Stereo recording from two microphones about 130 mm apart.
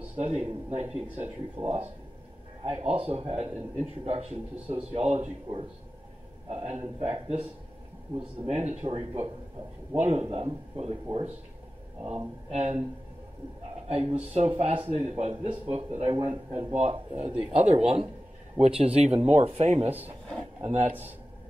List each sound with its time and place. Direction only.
0.1 s speech: 55° right (ahead or behind)
0.8 s speech: 5° right (ahead or behind)
1.1 s a man's voice: 55° right (ahead or behind)
12.4 s speech: 55° right (ahead or behind)
13.8 s a man's voice: 50° right (ahead or behind)